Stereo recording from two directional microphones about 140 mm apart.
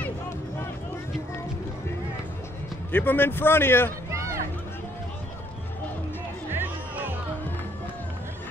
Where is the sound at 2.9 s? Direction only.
15° left (ahead or behind).